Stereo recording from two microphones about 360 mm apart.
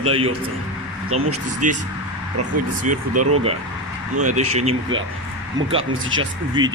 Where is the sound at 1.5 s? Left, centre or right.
Right.